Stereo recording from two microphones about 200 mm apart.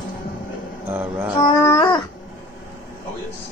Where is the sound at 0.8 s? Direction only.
10° right (ahead or behind).